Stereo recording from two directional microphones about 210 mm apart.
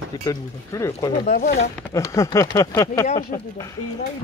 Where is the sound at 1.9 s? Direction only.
15° left (ahead or behind).